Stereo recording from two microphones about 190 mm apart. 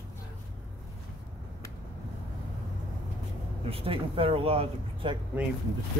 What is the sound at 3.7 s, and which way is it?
Speech, 30° right (ahead or behind).